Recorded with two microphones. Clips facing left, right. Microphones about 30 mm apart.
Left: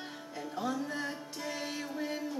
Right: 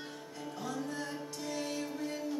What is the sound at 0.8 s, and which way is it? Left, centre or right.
Music, left.